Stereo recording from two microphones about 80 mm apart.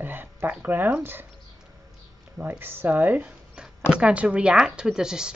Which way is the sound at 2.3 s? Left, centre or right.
Right.